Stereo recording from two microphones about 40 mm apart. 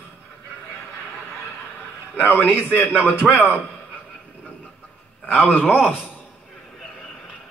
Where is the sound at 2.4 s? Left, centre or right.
Left.